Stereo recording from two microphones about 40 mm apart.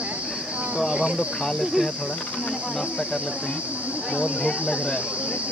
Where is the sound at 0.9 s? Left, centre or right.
Right.